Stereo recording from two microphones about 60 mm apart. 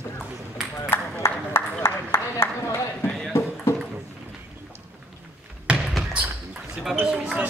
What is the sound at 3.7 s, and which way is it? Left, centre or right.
Music, left.